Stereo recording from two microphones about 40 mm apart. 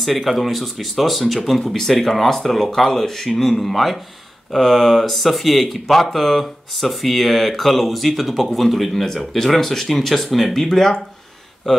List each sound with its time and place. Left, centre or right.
0.0 s speech: centre
9.0 s speech: centre